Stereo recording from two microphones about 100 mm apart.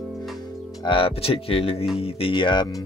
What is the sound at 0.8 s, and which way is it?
Speech, 60° left (ahead or behind).